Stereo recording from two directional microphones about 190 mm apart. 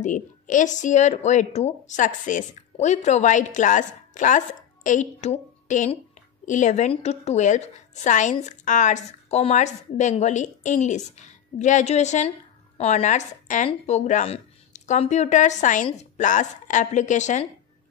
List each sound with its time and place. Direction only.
0.0 s a woman's voice: 40° left (ahead or behind)